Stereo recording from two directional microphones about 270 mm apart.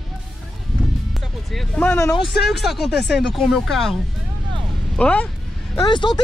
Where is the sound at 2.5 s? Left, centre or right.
Centre.